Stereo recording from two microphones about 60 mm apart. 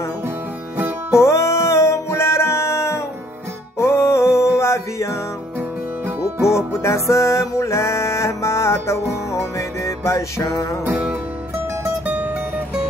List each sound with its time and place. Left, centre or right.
1.1 s music: left
6.4 s music: left
12.1 s music: right